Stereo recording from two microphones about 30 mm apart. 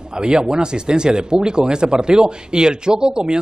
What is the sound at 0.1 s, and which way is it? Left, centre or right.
Speech, right.